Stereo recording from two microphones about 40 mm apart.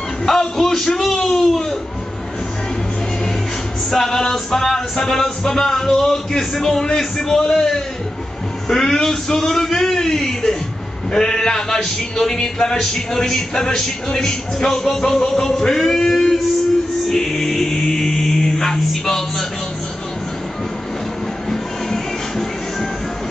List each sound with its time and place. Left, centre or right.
0.2 s a man's voice: centre
3.9 s speech: centre
17.1 s music: centre
21.5 s music: centre